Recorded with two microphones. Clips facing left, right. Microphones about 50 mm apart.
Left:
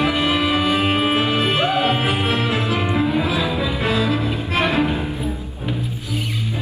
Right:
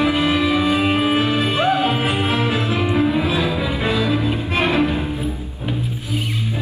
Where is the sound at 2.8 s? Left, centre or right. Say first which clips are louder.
Right 3 dB; centre.